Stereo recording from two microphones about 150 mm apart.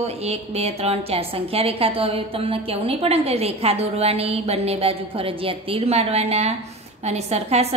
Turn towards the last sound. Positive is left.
turn(degrees=-45)  # may be behind; listen again after turning